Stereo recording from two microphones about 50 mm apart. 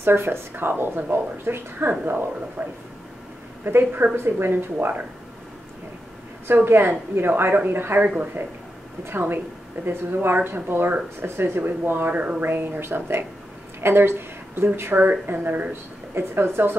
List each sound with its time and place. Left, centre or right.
0.0 s a woman's voice: right
1.9 s speech: right
4.1 s a woman's voice: right
6.4 s a woman's voice: right
9.8 s a woman's voice: right
12.1 s speech: right
12.4 s a woman's voice: right
15.0 s speech: right
16.2 s a woman's voice: right